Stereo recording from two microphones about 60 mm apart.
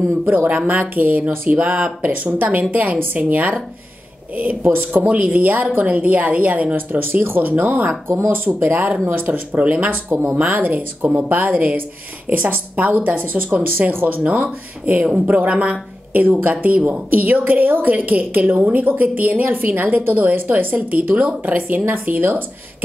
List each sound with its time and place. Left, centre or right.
0.2 s speech: right
0.5 s a woman's voice: right
4.6 s a woman's voice: right